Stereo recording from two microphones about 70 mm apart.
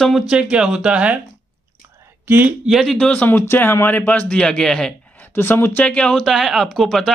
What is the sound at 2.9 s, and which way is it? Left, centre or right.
Speech, centre.